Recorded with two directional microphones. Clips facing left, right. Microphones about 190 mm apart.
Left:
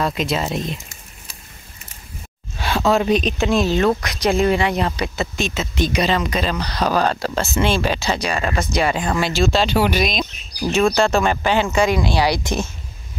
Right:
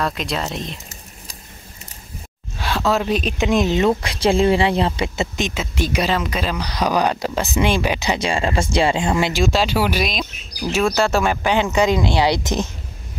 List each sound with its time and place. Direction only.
0.0 s speech: centre (ahead or behind)
2.6 s speech: centre (ahead or behind)
3.3 s speech: 15° right (ahead or behind)